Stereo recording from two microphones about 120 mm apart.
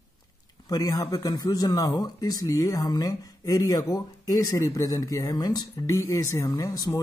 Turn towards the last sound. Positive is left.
turn(degrees=30)  # may be behind; listen again after turning